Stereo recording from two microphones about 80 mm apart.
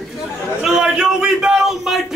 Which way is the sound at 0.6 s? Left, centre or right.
Centre.